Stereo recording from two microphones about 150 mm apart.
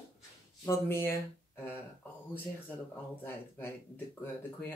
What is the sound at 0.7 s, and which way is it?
Speech, 15° left (ahead or behind).